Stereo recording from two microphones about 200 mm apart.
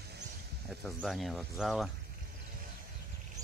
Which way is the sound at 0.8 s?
Centre (ahead or behind).